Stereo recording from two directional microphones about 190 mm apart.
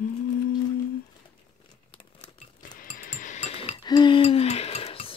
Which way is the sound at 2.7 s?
45° left (ahead or behind).